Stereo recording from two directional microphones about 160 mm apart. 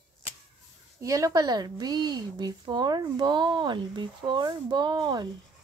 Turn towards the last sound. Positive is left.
turn(degrees=-25)  # may be behind; listen again after turning